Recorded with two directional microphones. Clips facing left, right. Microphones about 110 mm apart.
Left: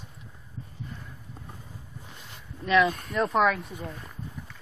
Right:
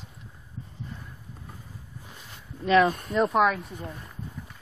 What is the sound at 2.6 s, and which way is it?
Speech, 40° right (ahead or behind).